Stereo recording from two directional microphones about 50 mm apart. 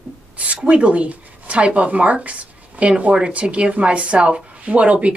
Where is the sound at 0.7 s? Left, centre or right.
Right.